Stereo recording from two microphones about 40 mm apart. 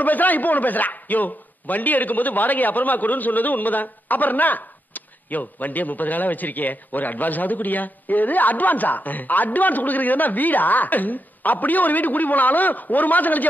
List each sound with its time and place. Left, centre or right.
0.0 s a man's voice: left